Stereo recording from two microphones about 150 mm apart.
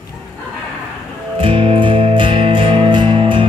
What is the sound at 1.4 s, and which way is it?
Music, 35° right (ahead or behind).